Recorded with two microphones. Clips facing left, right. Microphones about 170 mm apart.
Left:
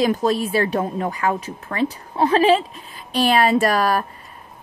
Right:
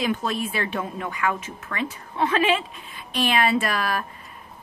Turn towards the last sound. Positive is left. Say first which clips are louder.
# left 7 dB
turn(degrees=40)  # may be behind; listen again after turning